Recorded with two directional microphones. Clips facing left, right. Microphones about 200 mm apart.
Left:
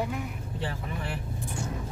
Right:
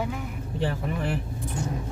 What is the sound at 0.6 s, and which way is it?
Vehicle, 55° right (ahead or behind).